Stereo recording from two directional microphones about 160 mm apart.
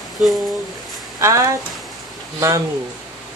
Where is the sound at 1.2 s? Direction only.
20° right (ahead or behind).